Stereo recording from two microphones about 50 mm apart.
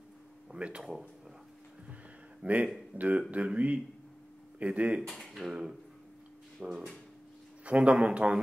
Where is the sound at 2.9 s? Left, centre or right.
Left.